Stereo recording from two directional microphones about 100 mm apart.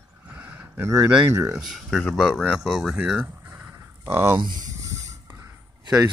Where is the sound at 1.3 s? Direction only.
30° right (ahead or behind).